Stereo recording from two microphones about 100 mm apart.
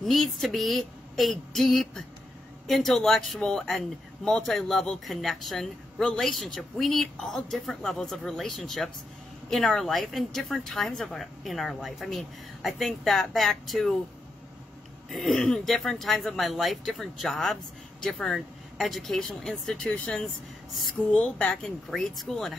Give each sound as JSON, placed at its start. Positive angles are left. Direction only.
{"t": 0.0, "sound": "a man's voice", "side_deg": 0}
{"t": 15.0, "sound": "a man's voice", "side_deg": 0}